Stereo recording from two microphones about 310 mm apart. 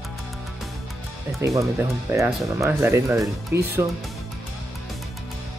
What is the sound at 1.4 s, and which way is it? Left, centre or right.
Speech, centre.